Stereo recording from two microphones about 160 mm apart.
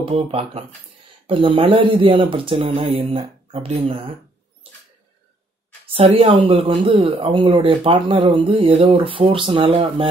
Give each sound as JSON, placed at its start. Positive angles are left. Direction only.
{"t": 0.0, "sound": "speech", "side_deg": -40}
{"t": 5.9, "sound": "speech", "side_deg": -35}